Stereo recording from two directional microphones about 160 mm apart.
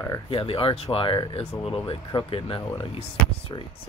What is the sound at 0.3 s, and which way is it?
Speech, 35° left (ahead or behind).